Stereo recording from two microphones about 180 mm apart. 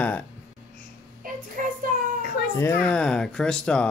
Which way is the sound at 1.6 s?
50° right (ahead or behind).